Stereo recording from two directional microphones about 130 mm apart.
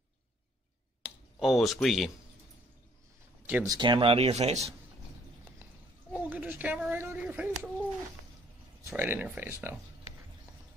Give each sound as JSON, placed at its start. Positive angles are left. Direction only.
{"t": 1.0, "sound": "speech", "side_deg": 0}
{"t": 3.6, "sound": "speech", "side_deg": -35}
{"t": 6.1, "sound": "speech", "side_deg": -15}
{"t": 8.9, "sound": "speech", "side_deg": -15}